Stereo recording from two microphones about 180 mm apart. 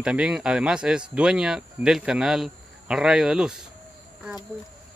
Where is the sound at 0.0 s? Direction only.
5° right (ahead or behind).